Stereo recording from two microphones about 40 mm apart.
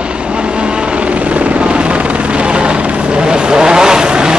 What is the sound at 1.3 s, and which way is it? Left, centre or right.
Helicopter, right.